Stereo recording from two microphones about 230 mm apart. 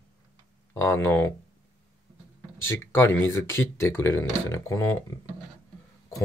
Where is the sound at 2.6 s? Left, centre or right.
Centre.